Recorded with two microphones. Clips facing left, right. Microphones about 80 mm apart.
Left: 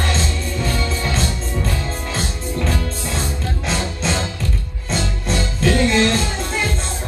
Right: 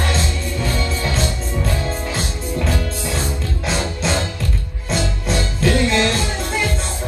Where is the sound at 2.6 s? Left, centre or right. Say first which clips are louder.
Right 1 dB; centre.